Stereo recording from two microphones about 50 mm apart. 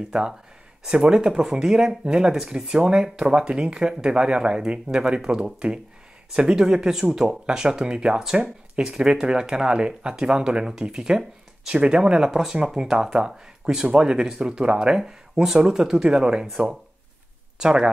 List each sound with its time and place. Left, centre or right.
0.8 s speech: right
17.6 s speech: centre